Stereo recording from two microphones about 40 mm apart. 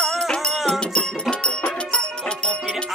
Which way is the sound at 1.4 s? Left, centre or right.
Left.